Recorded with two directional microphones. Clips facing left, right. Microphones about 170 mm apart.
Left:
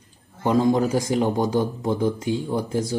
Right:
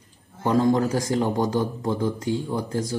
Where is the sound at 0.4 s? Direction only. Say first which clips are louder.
Left 1 dB; 15° left (ahead or behind).